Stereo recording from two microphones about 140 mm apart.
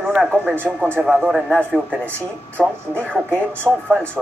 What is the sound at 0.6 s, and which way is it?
Speech, 15° right (ahead or behind).